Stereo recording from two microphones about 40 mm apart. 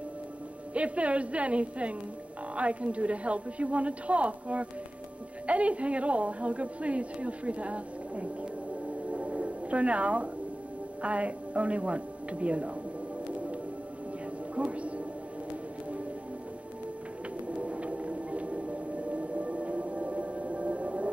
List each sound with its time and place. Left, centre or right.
0.7 s a woman's voice: right
9.1 s music: right
11.0 s speech: right
13.3 s music: right
17.5 s a sound: right